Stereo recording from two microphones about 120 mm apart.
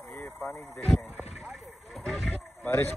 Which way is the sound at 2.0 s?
Centre (ahead or behind).